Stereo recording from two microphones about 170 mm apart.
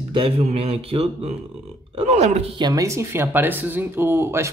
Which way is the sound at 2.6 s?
20° right (ahead or behind).